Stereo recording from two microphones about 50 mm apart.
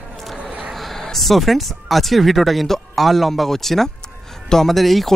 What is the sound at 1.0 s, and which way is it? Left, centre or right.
Speech, centre.